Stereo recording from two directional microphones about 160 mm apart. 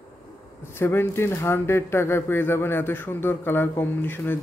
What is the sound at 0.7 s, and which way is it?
Speech, 15° left (ahead or behind).